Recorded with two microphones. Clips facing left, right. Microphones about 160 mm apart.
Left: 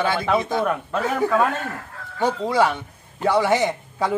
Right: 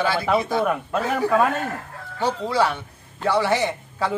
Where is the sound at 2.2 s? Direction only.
20° left (ahead or behind).